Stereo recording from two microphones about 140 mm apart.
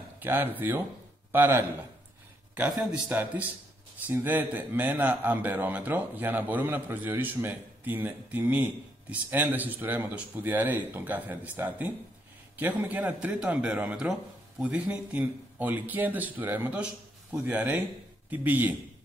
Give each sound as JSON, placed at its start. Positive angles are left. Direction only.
{"t": 0.2, "sound": "a man's voice", "side_deg": -15}